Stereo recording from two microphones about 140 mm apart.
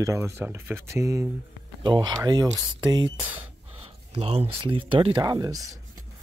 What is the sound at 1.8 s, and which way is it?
Speech, 30° right (ahead or behind).